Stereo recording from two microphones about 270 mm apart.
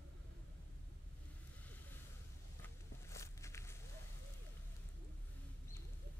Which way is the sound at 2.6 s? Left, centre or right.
Centre.